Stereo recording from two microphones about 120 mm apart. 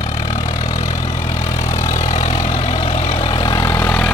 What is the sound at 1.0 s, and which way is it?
Vehicle, 25° left (ahead or behind).